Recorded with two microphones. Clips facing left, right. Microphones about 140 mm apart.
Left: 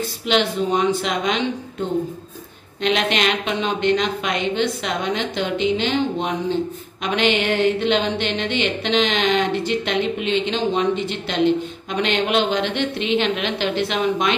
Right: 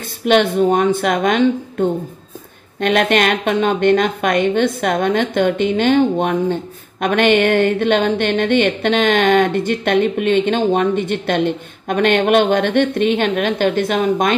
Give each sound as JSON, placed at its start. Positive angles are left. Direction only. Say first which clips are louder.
{"t": 0.2, "sound": "a woman's voice", "louder": "right 7 dB", "side_deg": -55}